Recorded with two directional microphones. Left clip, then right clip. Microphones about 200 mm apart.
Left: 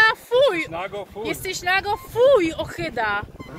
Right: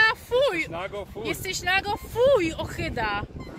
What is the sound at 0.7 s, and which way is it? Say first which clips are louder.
Speech: left 3 dB; 55° right (ahead or behind).